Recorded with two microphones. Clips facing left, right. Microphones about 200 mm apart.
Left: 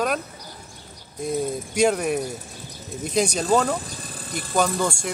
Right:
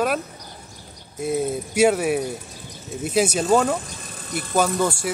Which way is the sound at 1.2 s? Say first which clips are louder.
Right 2 dB; 5° right (ahead or behind).